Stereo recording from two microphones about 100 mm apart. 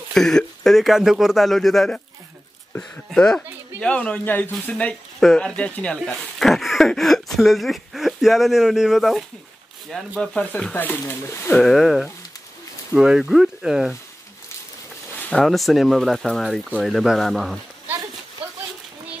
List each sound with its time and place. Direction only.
0.1 s speech: 5° left (ahead or behind)
6.0 s speech: centre (ahead or behind)
10.1 s speech: 10° left (ahead or behind)
11.6 s speech: centre (ahead or behind)
15.3 s speech: centre (ahead or behind)